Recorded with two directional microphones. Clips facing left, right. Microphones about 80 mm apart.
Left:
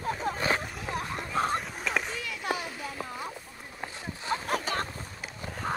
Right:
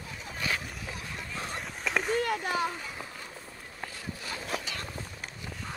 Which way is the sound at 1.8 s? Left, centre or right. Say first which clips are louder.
Even; centre.